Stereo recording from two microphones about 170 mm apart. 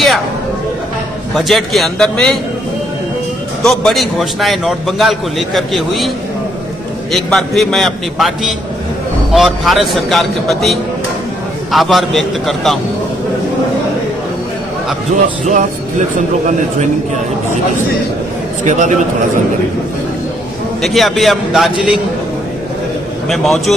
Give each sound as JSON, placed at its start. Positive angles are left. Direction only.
{"t": 1.3, "sound": "a man's voice", "side_deg": 0}
{"t": 3.6, "sound": "a man's voice", "side_deg": 0}
{"t": 15.1, "sound": "a man's voice", "side_deg": -55}
{"t": 18.6, "sound": "a man's voice", "side_deg": -45}
{"t": 20.8, "sound": "a man's voice", "side_deg": 0}
{"t": 23.2, "sound": "a man's voice", "side_deg": 0}